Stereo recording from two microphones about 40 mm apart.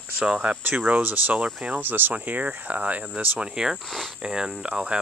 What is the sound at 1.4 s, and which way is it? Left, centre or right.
Speech, right.